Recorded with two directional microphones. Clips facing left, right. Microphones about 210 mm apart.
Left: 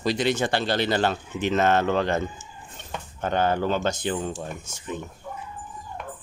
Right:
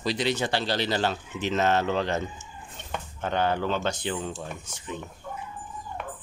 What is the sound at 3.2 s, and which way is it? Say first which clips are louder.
Speech: left 3 dB; 45° left (ahead or behind).